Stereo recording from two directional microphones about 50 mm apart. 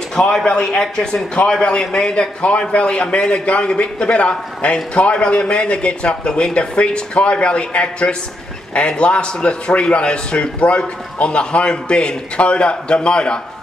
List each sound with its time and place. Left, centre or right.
0.3 s a man's voice: centre